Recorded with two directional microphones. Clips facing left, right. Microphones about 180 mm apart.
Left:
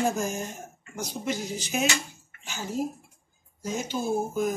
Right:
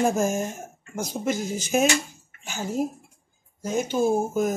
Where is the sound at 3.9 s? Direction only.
50° right (ahead or behind).